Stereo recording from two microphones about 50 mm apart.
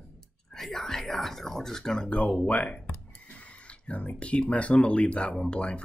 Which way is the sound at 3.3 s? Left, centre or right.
Left.